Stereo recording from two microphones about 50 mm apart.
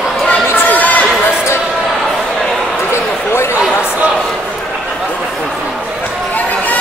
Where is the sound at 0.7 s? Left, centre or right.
Left.